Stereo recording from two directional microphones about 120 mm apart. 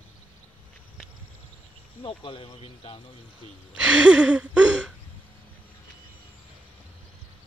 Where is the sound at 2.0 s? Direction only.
45° left (ahead or behind).